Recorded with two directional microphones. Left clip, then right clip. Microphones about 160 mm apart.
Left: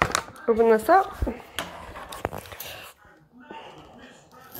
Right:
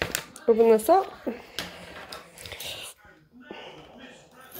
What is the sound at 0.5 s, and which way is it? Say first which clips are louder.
Speech: left 1 dB; 15° right (ahead or behind).